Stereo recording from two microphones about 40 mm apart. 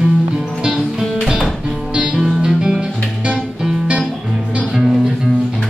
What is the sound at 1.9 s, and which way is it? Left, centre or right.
Music, right.